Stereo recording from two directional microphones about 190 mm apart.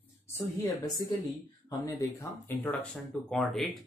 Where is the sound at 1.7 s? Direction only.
15° left (ahead or behind).